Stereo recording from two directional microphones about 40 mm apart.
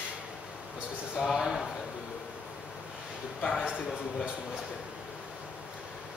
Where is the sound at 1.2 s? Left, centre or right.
Centre.